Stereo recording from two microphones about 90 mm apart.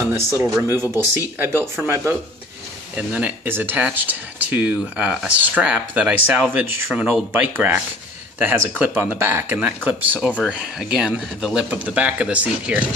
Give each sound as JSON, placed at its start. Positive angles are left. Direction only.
{"t": 0.1, "sound": "speech", "side_deg": -30}
{"t": 3.0, "sound": "speech", "side_deg": -15}
{"t": 3.4, "sound": "speech", "side_deg": -25}